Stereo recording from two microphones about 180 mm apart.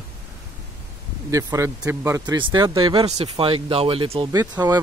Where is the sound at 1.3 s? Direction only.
20° right (ahead or behind).